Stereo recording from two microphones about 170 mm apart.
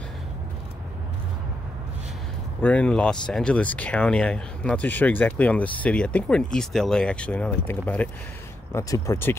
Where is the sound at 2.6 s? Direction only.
5° left (ahead or behind).